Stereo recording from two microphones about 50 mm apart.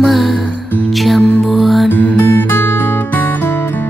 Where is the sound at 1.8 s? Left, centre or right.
Left.